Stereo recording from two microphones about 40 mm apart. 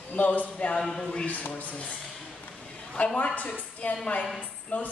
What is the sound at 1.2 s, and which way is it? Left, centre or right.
Speech, left.